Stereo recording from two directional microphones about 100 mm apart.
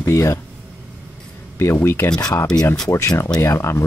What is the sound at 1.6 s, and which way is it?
Speech, 25° left (ahead or behind).